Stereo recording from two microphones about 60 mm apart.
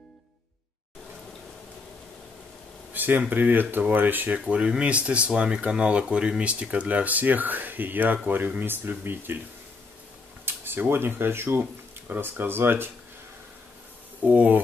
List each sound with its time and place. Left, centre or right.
2.9 s speech: right
10.4 s speech: right
14.2 s speech: right